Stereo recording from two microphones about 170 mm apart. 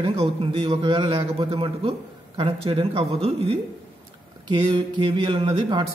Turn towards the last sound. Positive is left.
turn(degrees=-25)  # may be behind; listen again after turning